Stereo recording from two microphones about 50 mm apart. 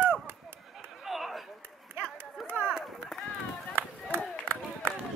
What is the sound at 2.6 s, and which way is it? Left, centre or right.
Run, centre.